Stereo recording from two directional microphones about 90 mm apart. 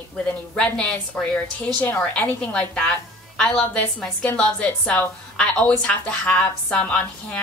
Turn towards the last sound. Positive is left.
turn(degrees=15)  # may be behind; listen again after turning